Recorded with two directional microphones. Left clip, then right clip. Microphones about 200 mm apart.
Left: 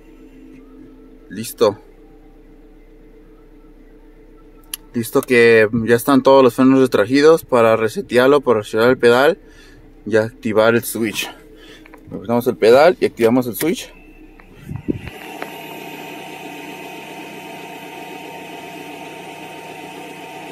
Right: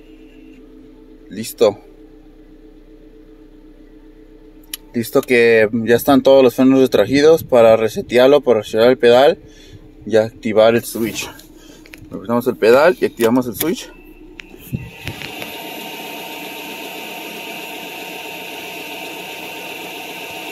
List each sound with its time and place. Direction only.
1.3 s speech: 5° left (ahead or behind)
4.6 s a sound: 5° left (ahead or behind)
5.3 s speech: 5° left (ahead or behind); by 13.9 s 20° left (ahead or behind)